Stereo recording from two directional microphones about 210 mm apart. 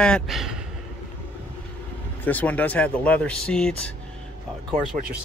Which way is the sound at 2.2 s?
5° left (ahead or behind).